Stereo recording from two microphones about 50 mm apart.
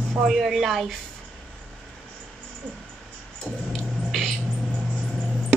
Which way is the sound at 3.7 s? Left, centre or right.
Centre.